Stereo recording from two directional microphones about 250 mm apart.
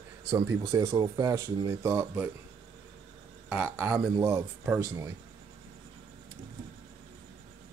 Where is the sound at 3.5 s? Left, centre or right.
Centre.